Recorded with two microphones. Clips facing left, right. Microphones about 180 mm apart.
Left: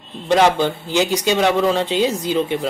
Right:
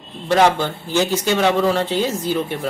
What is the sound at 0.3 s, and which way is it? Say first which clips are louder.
Speech: left 1 dB; 15° left (ahead or behind).